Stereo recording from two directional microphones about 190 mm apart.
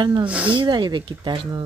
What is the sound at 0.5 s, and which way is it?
Speech, 25° right (ahead or behind).